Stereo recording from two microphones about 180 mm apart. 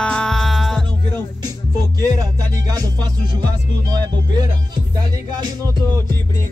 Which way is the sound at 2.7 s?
20° right (ahead or behind).